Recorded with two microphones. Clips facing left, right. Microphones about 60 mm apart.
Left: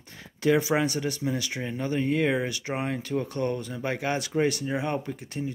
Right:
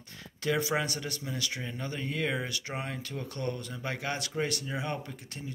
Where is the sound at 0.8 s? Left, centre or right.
Centre.